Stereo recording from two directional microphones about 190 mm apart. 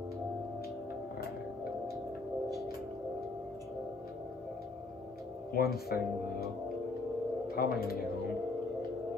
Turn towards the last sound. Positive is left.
turn(degrees=50)  # may be behind; listen again after turning